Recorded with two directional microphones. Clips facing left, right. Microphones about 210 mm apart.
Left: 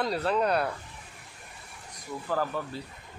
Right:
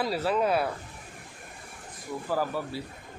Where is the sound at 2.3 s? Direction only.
10° right (ahead or behind).